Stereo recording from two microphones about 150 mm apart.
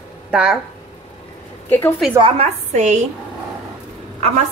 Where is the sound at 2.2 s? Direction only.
45° right (ahead or behind).